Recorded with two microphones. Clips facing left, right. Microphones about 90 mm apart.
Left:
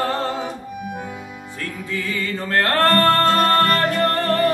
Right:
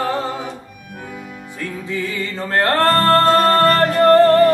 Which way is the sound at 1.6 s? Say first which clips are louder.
Right 3 dB; 20° right (ahead or behind).